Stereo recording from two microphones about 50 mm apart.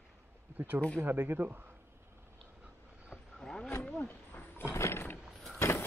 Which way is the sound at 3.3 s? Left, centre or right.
Centre.